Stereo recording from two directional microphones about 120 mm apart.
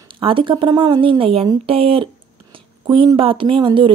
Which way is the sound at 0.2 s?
45° right (ahead or behind).